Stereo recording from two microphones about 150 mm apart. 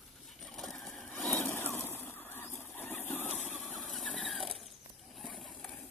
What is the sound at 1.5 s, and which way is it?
Vehicle, 15° left (ahead or behind).